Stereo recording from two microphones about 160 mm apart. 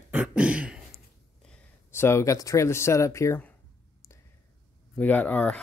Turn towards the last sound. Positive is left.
turn(degrees=10)  # may be behind; listen again after turning